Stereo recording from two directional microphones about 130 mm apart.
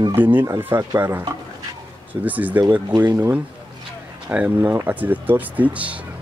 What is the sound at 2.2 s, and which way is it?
Speech, 10° right (ahead or behind).